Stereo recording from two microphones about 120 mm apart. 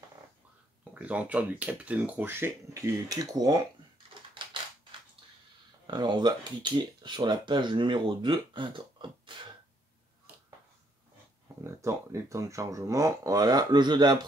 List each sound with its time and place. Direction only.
0.9 s speech: 10° right (ahead or behind); by 3.6 s 30° right (ahead or behind)
5.9 s speech: 40° right (ahead or behind)
11.6 s speech: 25° right (ahead or behind)